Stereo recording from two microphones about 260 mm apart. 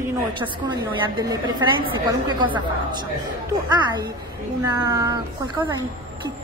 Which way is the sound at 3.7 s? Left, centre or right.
Centre.